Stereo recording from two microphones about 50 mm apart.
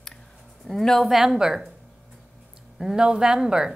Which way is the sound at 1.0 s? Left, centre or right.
Centre.